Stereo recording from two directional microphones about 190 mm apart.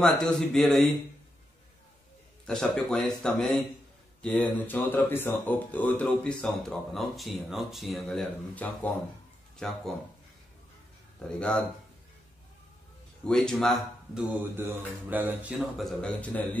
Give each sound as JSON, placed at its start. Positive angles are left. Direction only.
{"t": 0.0, "sound": "speech", "side_deg": 5}
{"t": 2.4, "sound": "speech", "side_deg": 5}
{"t": 11.2, "sound": "speech", "side_deg": 5}
{"t": 13.2, "sound": "speech", "side_deg": 5}
{"t": 14.4, "sound": "mantra", "side_deg": -10}
{"t": 15.8, "sound": "speech", "side_deg": 5}